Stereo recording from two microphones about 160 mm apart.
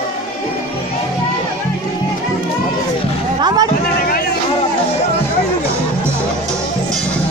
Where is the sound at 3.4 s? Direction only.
25° right (ahead or behind).